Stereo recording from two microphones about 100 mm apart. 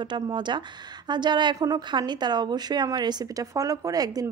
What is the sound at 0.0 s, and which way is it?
Speech, 50° right (ahead or behind).